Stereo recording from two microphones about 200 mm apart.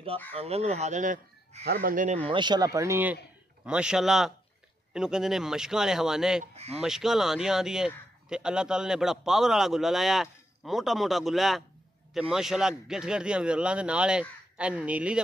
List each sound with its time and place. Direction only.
0.3 s speech: 30° right (ahead or behind)
1.6 s speech: 50° right (ahead or behind)
2.2 s a man's voice: 20° right (ahead or behind); by 6.4 s 5° right (ahead or behind)
6.4 s speech: 30° right (ahead or behind)
6.8 s a man's voice: centre (ahead or behind)